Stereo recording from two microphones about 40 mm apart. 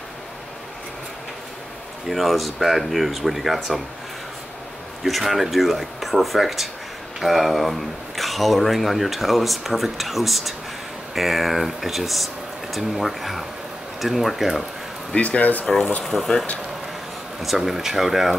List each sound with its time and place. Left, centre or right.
2.0 s speech: centre
5.0 s speech: centre
15.1 s speech: left
16.0 s speech: centre
17.4 s speech: centre